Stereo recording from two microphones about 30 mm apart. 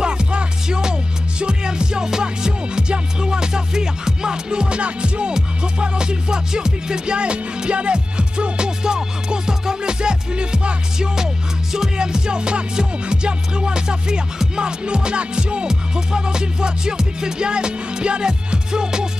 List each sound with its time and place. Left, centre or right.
0.0 s music: right
11.7 s music: right
15.6 s music: right